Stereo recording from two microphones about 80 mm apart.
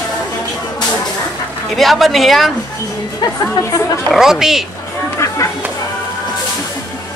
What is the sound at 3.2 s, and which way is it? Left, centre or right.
Speech, left.